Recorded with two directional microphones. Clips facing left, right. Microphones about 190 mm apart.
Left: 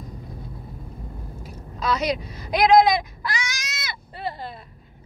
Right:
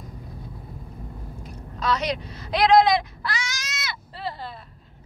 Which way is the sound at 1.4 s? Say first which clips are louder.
Even; 10° left (ahead or behind).